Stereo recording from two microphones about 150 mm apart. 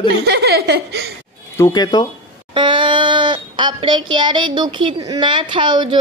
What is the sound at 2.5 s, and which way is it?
Speech, 35° right (ahead or behind).